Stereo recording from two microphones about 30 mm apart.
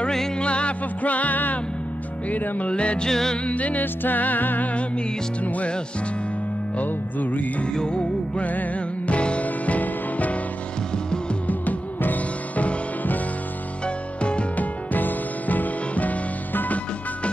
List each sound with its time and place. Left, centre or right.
0.4 s music: left
1.0 s music: left
2.7 s music: left
3.1 s music: centre
3.4 s music: left
3.8 s music: left
6.8 s music: left
7.7 s music: left
8.4 s music: left
9.1 s music: left
9.4 s music: left
11.4 s music: left
13.8 s music: left
14.6 s music: left